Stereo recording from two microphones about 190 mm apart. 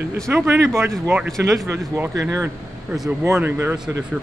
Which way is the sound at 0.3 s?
10° right (ahead or behind).